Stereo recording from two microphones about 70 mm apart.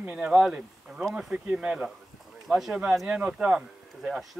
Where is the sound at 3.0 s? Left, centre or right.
Centre.